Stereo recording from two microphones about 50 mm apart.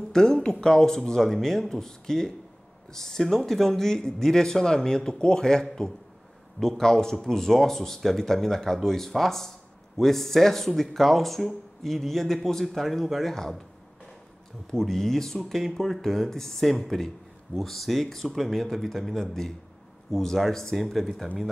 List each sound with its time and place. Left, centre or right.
0.1 s speech: centre
14.7 s speech: centre